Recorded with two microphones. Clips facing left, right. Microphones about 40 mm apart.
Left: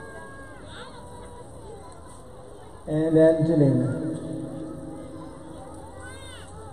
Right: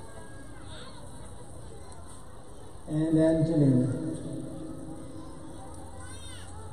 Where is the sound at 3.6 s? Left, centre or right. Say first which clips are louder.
Left 3 dB; left.